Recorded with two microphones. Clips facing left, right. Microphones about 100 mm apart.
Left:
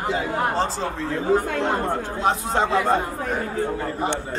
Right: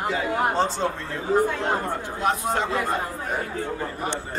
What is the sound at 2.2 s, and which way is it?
Speech, 25° left (ahead or behind).